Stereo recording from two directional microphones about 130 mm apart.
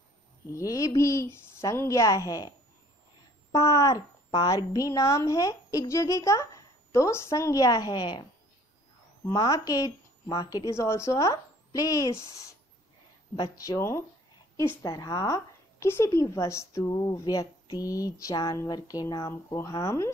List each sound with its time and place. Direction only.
0.5 s a woman's voice: 25° left (ahead or behind)
3.5 s a woman's voice: 25° left (ahead or behind)
13.4 s a woman's voice: 25° left (ahead or behind)